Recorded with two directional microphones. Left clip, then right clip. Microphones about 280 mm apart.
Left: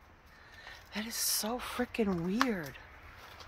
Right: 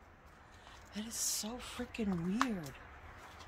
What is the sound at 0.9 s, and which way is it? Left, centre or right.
A woman's voice, centre.